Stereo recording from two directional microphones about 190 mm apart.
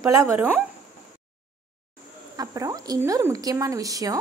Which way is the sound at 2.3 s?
20° right (ahead or behind).